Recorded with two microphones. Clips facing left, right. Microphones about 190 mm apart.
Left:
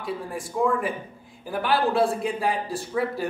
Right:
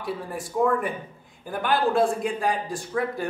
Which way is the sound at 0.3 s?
Centre (ahead or behind).